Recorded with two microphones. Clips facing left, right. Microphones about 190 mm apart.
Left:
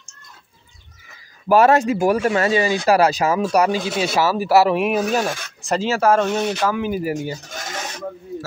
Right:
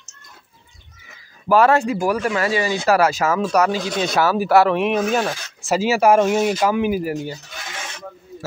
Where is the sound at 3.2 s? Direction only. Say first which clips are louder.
Left 1 dB; 15° left (ahead or behind); by 6.9 s 15° right (ahead or behind).